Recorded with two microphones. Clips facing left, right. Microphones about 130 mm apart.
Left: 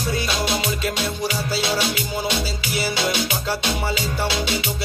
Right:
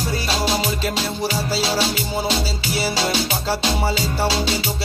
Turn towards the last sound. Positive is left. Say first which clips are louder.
# right 3 dB
turn(degrees=-35)  # may be behind; listen again after turning